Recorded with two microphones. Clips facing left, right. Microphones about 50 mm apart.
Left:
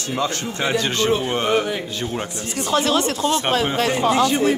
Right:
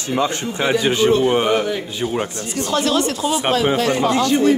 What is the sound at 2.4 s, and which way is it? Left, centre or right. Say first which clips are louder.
Speech: even; left.